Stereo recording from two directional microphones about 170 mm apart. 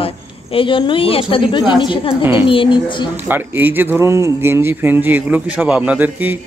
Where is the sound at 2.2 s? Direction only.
10° right (ahead or behind).